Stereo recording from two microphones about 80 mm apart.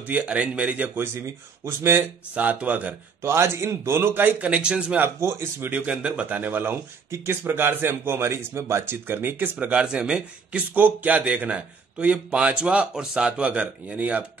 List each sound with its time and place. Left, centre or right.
0.0 s speech: centre
1.0 s speech: right
2.0 s speech: centre
3.2 s speech: right; by 5.0 s centre
5.0 s speech: right
5.7 s speech: centre